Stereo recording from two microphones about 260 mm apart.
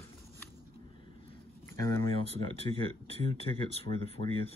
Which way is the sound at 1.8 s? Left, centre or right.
Centre.